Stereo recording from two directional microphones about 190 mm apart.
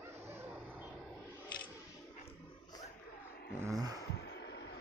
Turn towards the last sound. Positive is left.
turn(degrees=65)  # may be behind; listen again after turning